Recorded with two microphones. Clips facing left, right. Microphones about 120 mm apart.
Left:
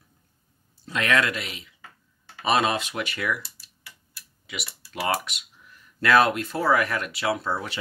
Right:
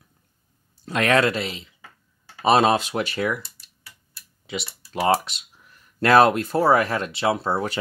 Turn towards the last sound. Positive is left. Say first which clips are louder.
# right 4 dB
turn(degrees=-30)  # may be behind; listen again after turning